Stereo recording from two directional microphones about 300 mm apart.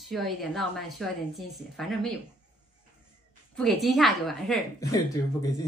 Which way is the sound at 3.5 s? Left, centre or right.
Centre.